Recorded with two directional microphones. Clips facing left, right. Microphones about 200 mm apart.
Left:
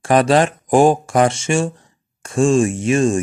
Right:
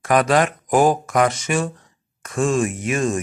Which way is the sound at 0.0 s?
30° left (ahead or behind).